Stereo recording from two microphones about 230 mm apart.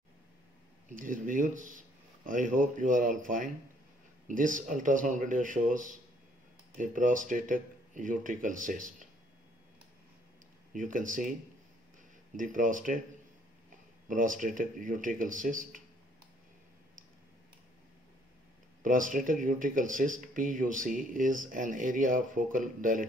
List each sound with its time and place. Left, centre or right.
0.8 s speech: right
10.7 s speech: right
12.4 s speech: right
14.0 s speech: right
18.8 s speech: right